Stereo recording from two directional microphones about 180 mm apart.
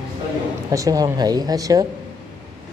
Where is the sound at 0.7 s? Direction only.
20° right (ahead or behind).